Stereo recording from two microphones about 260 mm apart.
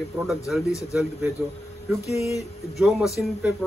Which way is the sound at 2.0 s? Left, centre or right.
Left.